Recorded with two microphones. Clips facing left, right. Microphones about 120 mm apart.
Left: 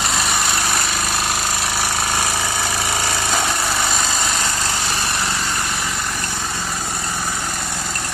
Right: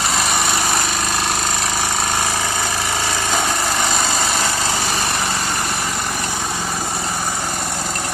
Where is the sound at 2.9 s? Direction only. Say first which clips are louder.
Right 1 dB; 15° right (ahead or behind).